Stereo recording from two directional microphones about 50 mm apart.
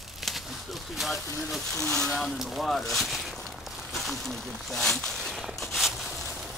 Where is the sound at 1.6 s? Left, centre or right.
Centre.